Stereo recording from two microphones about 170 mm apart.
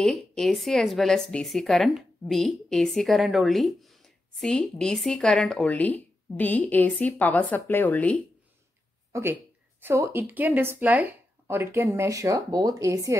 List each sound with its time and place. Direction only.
0.0 s a woman's voice: centre (ahead or behind)
9.1 s a woman's voice: 10° right (ahead or behind)